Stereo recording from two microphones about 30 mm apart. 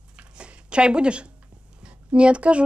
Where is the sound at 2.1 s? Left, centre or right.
Right.